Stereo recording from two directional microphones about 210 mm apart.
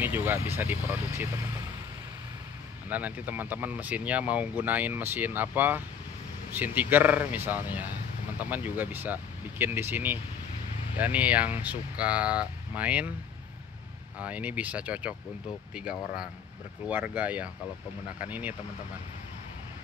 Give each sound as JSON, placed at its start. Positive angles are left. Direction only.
{"t": 0.0, "sound": "speech", "side_deg": -10}
{"t": 2.9, "sound": "speech", "side_deg": -5}
{"t": 14.2, "sound": "speech", "side_deg": -5}